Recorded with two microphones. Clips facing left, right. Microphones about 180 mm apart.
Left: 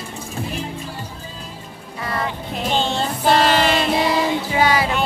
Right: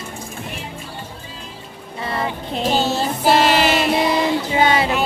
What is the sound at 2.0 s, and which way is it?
Music, 25° right (ahead or behind).